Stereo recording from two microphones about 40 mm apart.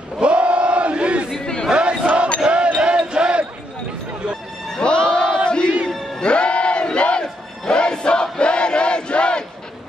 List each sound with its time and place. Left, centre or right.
0.2 s battle cry: right
1.4 s crowd: centre
1.7 s battle cry: right
2.4 s music: right
2.8 s basketball bounce: right
4.7 s crowd: left
6.2 s battle cry: left